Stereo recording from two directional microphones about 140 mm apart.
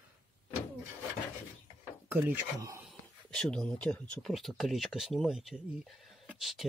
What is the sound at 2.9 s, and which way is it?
Speech, 5° left (ahead or behind).